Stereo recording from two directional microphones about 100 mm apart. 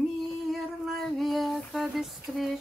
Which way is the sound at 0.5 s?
Centre (ahead or behind).